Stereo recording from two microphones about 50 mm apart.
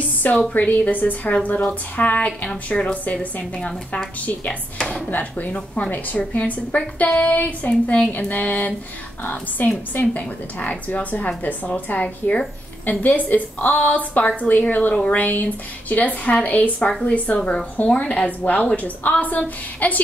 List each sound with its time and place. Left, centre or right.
0.2 s a woman's voice: left
3.5 s a woman's voice: centre
5.1 s a woman's voice: left